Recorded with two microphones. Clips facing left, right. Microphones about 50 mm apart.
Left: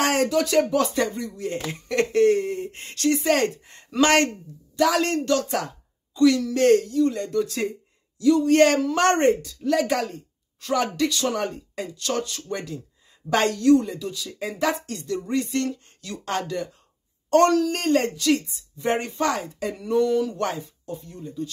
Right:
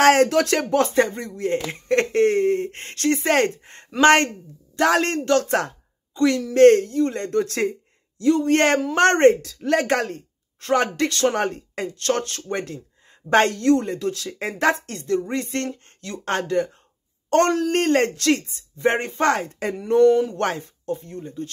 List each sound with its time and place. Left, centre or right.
0.0 s speech: right
0.7 s a woman's voice: right
6.1 s a woman's voice: right
8.2 s a woman's voice: right
14.6 s a woman's voice: right
18.8 s a woman's voice: right
20.3 s a woman's voice: right